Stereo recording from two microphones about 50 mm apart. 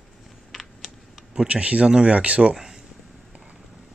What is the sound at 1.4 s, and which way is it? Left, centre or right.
Speech, right.